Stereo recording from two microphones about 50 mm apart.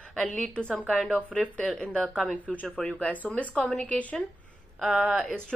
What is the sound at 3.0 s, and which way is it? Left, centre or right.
Speech, left.